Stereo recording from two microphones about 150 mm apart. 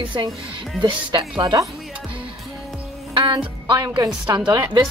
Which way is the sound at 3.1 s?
35° right (ahead or behind).